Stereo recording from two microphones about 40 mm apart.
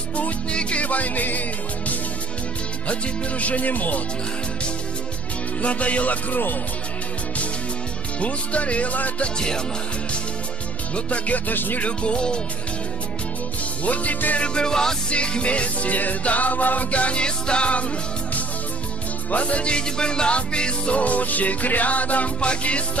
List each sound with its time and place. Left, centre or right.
0.5 s music: left
2.9 s music: left
5.6 s music: left
8.2 s music: left
11.1 s music: left
11.8 s music: left
13.8 s music: left
14.4 s music: left
15.0 s music: left
19.3 s music: left
22.4 s music: left